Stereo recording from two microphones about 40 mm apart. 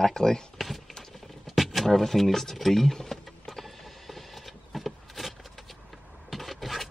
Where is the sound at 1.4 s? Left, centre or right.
Centre.